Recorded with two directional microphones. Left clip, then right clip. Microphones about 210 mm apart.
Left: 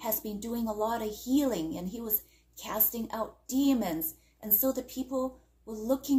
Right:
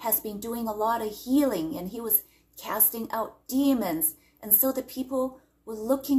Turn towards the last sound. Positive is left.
turn(degrees=0)  # may be behind; listen again after turning